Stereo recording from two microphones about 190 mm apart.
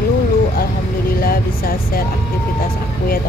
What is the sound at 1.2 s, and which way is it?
Speech, 50° left (ahead or behind).